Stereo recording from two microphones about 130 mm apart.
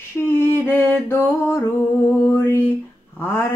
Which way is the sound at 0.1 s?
20° left (ahead or behind).